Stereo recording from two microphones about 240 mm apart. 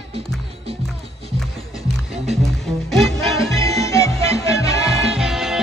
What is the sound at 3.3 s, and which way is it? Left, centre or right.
Music, centre.